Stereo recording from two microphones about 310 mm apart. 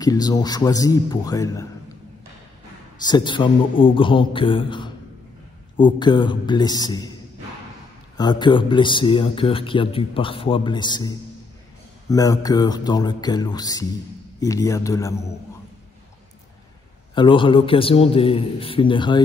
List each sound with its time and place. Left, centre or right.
0.0 s speech: centre
3.1 s speech: centre
8.2 s speech: centre
17.1 s speech: centre